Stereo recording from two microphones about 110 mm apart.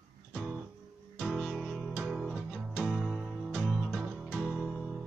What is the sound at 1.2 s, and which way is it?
Guitar, centre (ahead or behind).